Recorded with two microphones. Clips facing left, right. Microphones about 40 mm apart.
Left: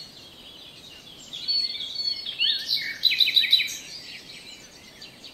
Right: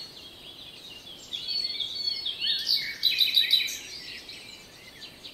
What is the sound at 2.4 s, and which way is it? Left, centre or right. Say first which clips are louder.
Bird vocalization: left 4 dB; left.